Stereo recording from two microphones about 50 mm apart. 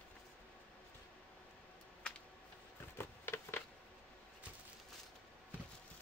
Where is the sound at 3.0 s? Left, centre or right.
Left.